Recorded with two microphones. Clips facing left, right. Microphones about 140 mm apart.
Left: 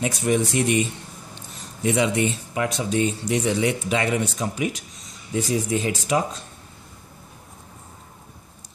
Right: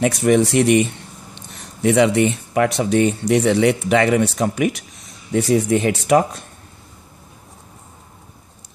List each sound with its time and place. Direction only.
0.0 s speech: 70° right (ahead or behind)